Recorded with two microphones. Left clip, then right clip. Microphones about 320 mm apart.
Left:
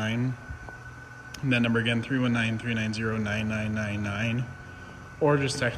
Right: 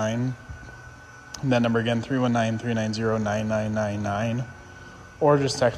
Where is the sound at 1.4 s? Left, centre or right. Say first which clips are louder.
Right 3 dB; right.